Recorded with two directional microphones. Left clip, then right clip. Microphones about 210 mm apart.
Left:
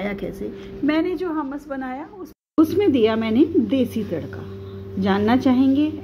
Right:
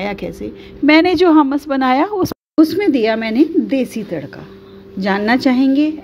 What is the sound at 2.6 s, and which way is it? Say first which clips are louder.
A woman's voice: right 4 dB; 20° right (ahead or behind).